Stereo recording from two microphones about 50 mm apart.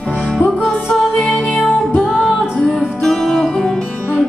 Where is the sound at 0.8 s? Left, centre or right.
Centre.